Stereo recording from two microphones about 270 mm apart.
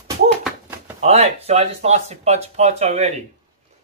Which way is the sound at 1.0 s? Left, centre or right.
Right.